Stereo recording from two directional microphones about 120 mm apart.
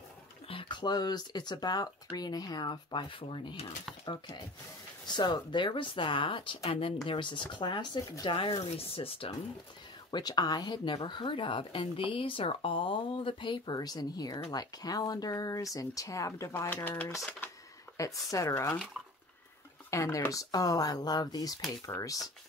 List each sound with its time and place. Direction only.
0.5 s speech: 45° left (ahead or behind)
10.1 s speech: 35° left (ahead or behind); by 16.9 s 15° left (ahead or behind)
17.9 s speech: 25° left (ahead or behind)
19.9 s speech: 25° left (ahead or behind)